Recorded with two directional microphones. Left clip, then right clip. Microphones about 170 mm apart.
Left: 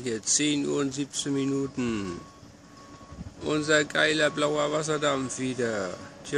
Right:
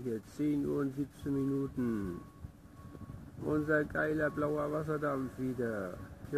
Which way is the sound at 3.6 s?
20° left (ahead or behind).